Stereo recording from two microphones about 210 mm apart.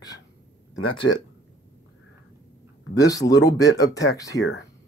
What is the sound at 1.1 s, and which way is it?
Speech, 70° left (ahead or behind).